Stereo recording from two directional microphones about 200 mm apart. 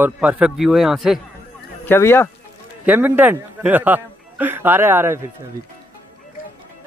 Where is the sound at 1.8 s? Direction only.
10° left (ahead or behind).